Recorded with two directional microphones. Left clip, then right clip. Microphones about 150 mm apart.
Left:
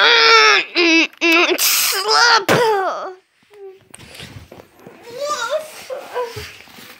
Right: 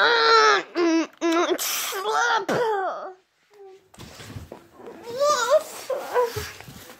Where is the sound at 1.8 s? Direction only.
10° left (ahead or behind).